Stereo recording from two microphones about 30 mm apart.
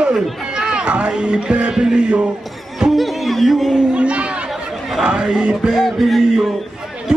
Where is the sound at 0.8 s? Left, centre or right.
Right.